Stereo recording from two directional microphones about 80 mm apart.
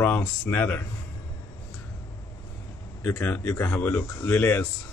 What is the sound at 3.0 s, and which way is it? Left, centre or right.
A man's voice, left.